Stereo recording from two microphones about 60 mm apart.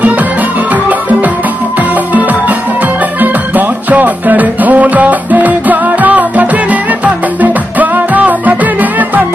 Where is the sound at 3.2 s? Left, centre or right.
Right.